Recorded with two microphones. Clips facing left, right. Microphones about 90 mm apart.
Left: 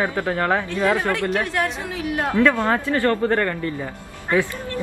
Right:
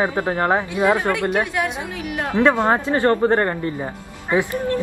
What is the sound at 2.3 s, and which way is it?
Speech, 20° right (ahead or behind).